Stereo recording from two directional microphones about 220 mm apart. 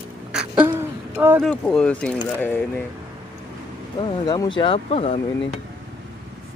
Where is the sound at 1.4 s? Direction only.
Centre (ahead or behind).